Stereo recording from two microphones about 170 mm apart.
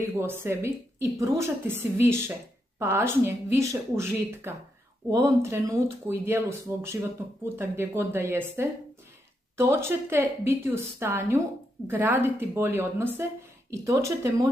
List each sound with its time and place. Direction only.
0.0 s speech: 15° right (ahead or behind)